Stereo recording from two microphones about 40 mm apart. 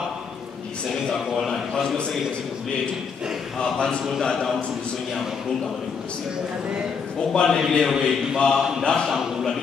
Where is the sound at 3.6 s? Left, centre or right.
Centre.